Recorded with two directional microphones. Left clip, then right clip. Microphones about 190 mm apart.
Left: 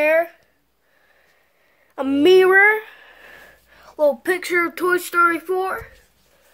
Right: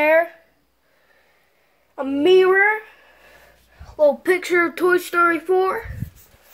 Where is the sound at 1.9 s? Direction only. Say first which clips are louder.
Left 2 dB; 45° left (ahead or behind).